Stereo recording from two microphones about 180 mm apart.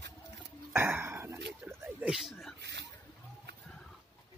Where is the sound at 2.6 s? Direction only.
70° right (ahead or behind).